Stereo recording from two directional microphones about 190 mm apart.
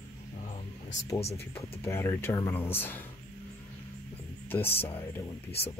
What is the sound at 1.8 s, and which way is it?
Speech, 15° left (ahead or behind).